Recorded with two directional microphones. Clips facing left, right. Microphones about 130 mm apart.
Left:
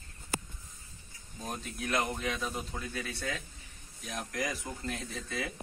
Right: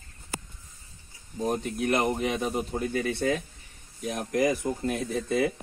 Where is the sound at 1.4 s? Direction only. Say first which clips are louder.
Right 11 dB; 60° right (ahead or behind).